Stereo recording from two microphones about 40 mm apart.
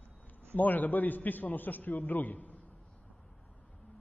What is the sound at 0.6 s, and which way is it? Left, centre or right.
A man's voice, left.